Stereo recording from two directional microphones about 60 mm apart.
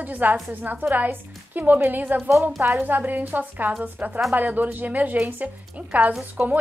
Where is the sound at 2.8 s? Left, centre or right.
Right.